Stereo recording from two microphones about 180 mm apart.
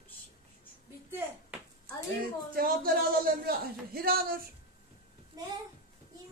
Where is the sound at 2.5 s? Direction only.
55° right (ahead or behind).